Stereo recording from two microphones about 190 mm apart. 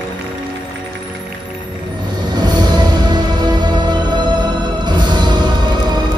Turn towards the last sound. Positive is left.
turn(degrees=-20)  # may be behind; listen again after turning